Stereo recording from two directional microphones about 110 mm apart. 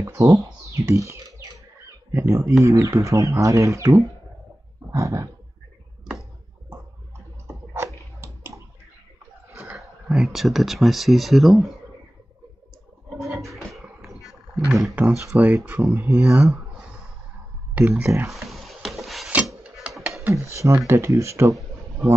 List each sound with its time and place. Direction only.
0.0 s speech: 30° right (ahead or behind)
2.1 s speech: 25° right (ahead or behind)
7.4 s a sound: 25° right (ahead or behind)
9.8 s speech: centre (ahead or behind)
13.2 s a sound: 30° right (ahead or behind)
14.7 s speech: 5° right (ahead or behind)
15.3 s speech: 15° right (ahead or behind)
17.7 s speech: 20° right (ahead or behind)
18.3 s a sound: centre (ahead or behind)
19.9 s music: centre (ahead or behind)
20.2 s speech: 25° right (ahead or behind)